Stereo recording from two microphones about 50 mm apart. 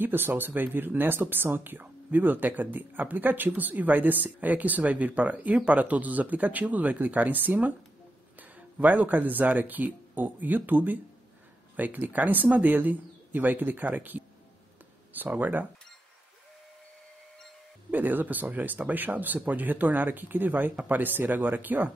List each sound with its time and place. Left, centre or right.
0.0 s speech: right
17.9 s speech: right